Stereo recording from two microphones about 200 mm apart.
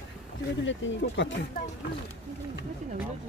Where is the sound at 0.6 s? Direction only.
65° left (ahead or behind).